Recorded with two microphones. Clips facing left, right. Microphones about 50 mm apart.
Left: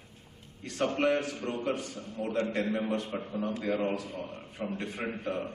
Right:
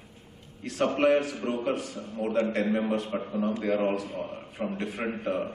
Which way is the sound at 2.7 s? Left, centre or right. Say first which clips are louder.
Right 4 dB; centre.